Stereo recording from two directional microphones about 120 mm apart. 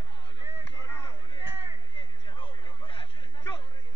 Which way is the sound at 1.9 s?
45° left (ahead or behind).